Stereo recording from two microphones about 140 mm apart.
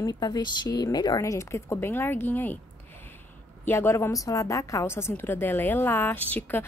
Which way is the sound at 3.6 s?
15° left (ahead or behind).